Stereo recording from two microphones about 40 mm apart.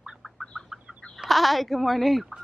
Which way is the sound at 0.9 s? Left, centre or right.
Centre.